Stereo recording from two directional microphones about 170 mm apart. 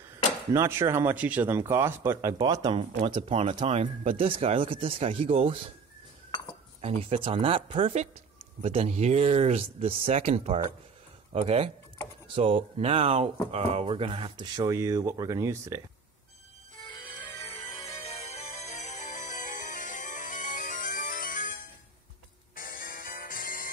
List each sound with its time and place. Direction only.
0.5 s speech: 15° right (ahead or behind); by 5.6 s 35° right (ahead or behind)
6.8 s speech: 35° right (ahead or behind); by 15.8 s 15° right (ahead or behind)
17.5 s music: 35° left (ahead or behind); by 21.5 s 50° left (ahead or behind)
22.6 s music: 55° left (ahead or behind)